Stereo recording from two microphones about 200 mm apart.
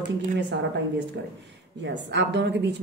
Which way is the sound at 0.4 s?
60° right (ahead or behind).